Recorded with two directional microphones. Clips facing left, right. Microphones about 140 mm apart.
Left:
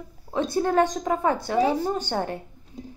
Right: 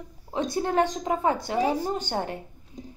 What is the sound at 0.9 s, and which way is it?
Speech, 45° left (ahead or behind).